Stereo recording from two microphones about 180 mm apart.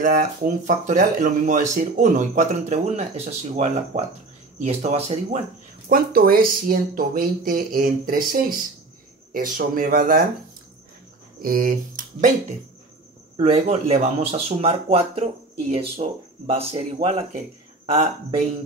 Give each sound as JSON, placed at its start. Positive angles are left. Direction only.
{"t": 0.0, "sound": "speech", "side_deg": -45}
{"t": 5.9, "sound": "speech", "side_deg": -55}
{"t": 11.4, "sound": "speech", "side_deg": -50}
{"t": 13.4, "sound": "speech", "side_deg": -35}